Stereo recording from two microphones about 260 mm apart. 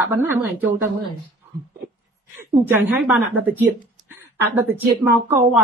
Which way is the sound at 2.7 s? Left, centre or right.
Centre.